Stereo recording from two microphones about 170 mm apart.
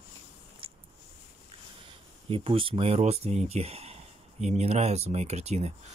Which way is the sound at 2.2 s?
30° right (ahead or behind).